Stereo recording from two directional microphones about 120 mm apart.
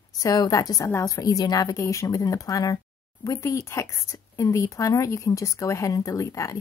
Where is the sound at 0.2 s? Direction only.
30° left (ahead or behind).